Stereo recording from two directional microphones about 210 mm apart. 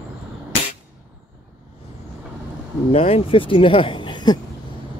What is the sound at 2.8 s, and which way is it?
Speech, 30° left (ahead or behind).